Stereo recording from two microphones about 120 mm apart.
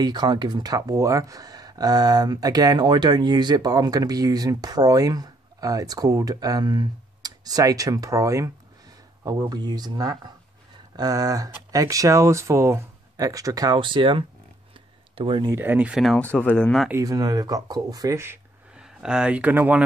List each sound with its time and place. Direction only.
0.0 s speech: 35° right (ahead or behind)
15.5 s speech: 15° right (ahead or behind)
15.9 s speech: centre (ahead or behind)
16.2 s speech: 10° left (ahead or behind)
16.9 s speech: 30° right (ahead or behind)
18.8 s speech: 5° right (ahead or behind)